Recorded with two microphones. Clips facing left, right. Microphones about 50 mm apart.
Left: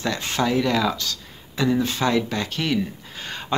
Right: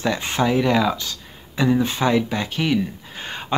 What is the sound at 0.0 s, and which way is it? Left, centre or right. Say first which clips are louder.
Speech: right 3 dB; centre.